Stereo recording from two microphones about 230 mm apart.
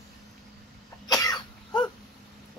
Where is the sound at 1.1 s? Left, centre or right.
Centre.